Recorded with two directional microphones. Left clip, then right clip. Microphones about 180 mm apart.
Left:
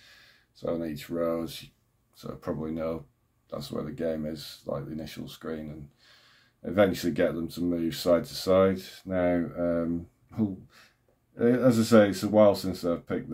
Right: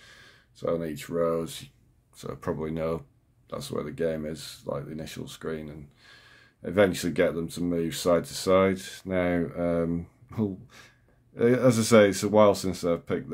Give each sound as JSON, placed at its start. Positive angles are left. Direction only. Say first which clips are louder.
{"t": 0.0, "sound": "speech", "louder": "right 3 dB", "side_deg": -20}